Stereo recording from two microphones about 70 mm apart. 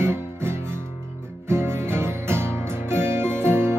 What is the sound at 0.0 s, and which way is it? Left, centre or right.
Music, right.